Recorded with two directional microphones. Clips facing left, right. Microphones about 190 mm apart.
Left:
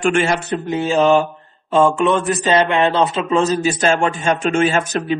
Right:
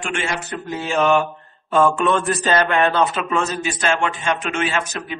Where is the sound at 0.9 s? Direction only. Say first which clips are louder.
Left 3 dB; 30° left (ahead or behind).